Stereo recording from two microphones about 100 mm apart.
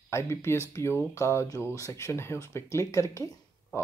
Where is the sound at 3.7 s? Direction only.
30° left (ahead or behind).